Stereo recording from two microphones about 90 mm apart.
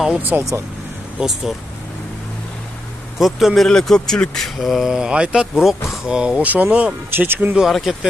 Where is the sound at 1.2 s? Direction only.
10° right (ahead or behind).